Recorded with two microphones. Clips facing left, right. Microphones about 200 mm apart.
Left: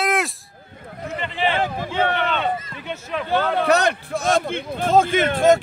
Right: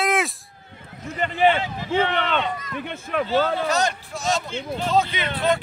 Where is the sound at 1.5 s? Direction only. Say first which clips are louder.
Right 1 dB; 50° left (ahead or behind).